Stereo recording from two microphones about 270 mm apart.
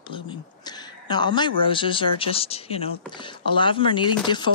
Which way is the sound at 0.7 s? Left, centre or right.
Centre.